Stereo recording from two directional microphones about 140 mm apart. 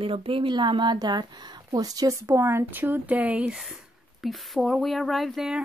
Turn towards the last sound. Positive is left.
turn(degrees=0)  # may be behind; listen again after turning